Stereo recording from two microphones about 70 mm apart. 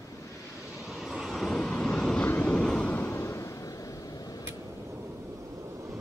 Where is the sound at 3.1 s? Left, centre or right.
Left.